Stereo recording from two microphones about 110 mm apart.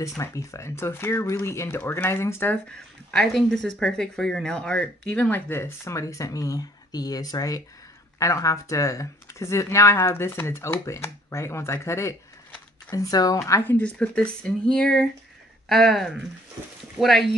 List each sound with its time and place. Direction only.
0.2 s speech: 30° left (ahead or behind); by 5.4 s 10° left (ahead or behind)
5.5 s speech: 20° left (ahead or behind); by 17.3 s centre (ahead or behind)